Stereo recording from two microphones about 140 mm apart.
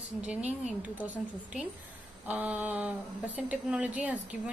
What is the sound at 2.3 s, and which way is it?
A woman's voice, 10° right (ahead or behind).